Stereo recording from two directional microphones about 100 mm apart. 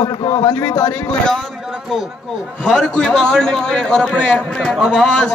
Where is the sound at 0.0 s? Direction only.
50° left (ahead or behind).